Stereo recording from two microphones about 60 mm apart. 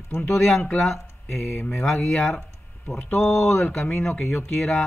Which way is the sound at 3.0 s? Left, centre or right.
Left.